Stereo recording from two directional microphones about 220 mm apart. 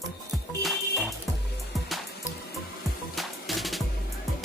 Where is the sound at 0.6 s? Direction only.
Centre (ahead or behind).